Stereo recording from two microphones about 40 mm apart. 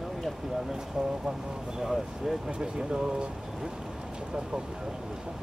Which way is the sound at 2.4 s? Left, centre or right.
Centre.